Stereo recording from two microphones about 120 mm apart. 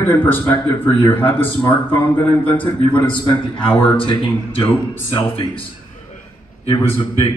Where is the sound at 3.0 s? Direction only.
45° left (ahead or behind).